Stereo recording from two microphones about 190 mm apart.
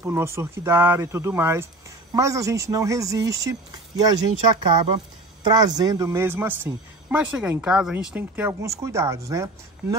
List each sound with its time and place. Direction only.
0.0 s speech: 15° right (ahead or behind)
5.4 s speech: 20° right (ahead or behind)